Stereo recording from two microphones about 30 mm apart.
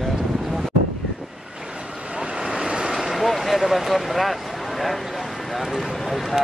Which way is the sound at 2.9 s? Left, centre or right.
Centre.